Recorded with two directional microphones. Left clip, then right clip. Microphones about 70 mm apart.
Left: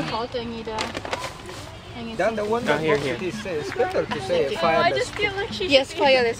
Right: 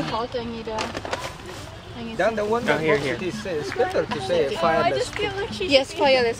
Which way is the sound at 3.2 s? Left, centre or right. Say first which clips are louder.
Even; right.